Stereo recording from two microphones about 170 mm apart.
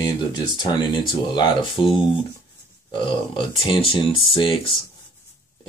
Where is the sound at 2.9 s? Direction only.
30° left (ahead or behind).